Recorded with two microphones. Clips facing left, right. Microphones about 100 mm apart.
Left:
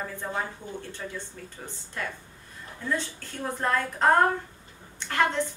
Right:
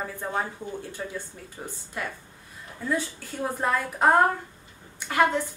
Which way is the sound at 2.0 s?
10° right (ahead or behind).